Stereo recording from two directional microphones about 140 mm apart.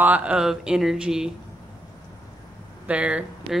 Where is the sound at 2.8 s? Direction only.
10° right (ahead or behind).